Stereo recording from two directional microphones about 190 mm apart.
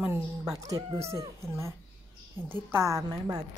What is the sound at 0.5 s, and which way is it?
Speech, 20° right (ahead or behind).